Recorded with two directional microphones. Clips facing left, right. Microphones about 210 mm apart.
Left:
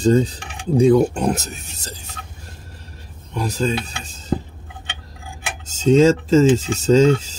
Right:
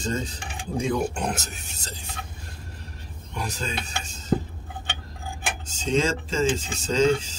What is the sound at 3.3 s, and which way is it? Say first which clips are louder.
Speech: left 10 dB; 35° left (ahead or behind).